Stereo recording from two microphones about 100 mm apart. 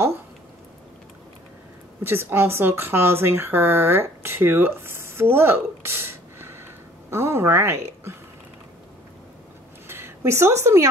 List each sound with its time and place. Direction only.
2.0 s speech: 20° right (ahead or behind)
9.8 s a woman's voice: 25° right (ahead or behind)